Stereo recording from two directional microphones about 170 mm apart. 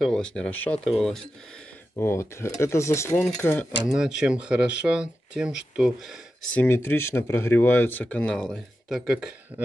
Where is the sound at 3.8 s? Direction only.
5° right (ahead or behind).